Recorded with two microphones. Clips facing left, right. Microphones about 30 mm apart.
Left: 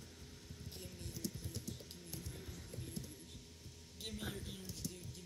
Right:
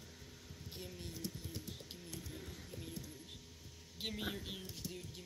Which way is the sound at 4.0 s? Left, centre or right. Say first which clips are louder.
Right 4 dB; right.